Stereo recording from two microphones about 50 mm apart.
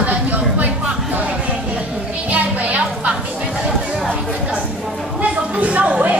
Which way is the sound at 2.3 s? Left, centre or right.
Right.